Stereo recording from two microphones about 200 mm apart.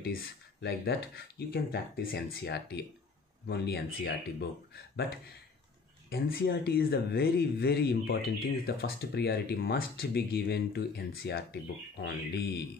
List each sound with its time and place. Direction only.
0.0 s speech: 50° left (ahead or behind)
6.0 s speech: 50° left (ahead or behind)